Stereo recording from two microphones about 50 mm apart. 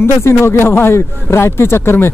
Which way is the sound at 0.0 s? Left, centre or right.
Left.